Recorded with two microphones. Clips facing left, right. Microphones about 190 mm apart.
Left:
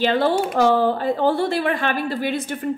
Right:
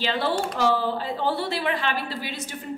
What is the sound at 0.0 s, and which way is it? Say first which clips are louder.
A woman's voice: left 7 dB; 50° left (ahead or behind).